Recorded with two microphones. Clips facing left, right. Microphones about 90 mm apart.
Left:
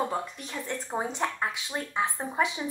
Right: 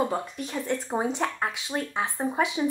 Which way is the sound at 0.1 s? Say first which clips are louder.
Right 3 dB; 15° right (ahead or behind).